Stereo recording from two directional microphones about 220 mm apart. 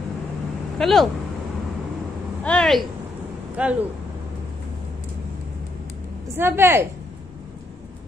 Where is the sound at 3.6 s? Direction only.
5° right (ahead or behind).